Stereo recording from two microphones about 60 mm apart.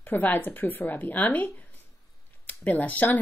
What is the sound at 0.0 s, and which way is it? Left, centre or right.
Speech, left.